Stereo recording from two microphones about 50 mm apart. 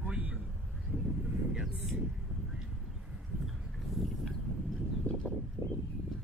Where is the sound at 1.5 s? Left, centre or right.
Centre.